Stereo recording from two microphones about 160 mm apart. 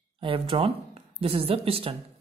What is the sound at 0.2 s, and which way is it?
A woman's voice, 35° right (ahead or behind).